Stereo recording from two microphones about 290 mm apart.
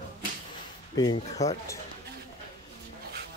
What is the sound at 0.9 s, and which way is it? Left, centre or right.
Speech, centre.